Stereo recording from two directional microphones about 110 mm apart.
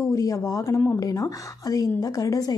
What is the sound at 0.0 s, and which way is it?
Speech, 30° left (ahead or behind).